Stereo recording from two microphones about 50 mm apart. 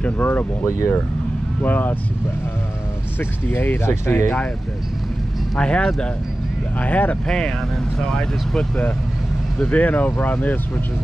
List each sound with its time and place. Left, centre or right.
0.0 s speech: left
0.7 s speech: left
1.6 s speech: left
3.6 s speech: left
5.6 s speech: centre
6.8 s speech: left
7.2 s speech: centre
9.7 s speech: left